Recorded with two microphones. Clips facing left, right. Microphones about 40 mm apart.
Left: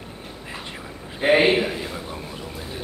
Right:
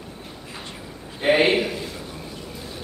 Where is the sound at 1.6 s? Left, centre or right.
Centre.